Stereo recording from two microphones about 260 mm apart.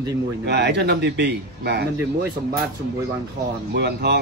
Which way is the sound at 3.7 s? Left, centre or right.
Right.